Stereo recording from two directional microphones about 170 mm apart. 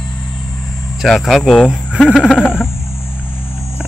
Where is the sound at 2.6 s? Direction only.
15° left (ahead or behind).